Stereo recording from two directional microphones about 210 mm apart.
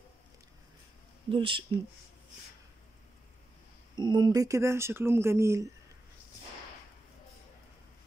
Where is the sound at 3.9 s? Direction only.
20° right (ahead or behind).